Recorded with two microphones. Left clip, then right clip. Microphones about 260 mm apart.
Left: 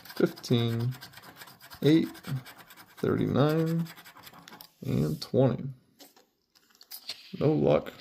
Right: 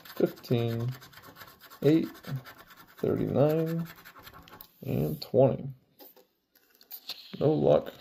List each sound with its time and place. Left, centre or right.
0.2 s speech: left
1.8 s speech: left
7.3 s speech: left